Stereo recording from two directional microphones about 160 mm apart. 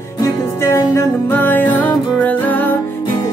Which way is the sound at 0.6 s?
15° left (ahead or behind).